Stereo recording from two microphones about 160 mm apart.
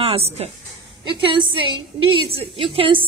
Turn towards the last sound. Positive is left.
turn(degrees=-35)  # may be behind; listen again after turning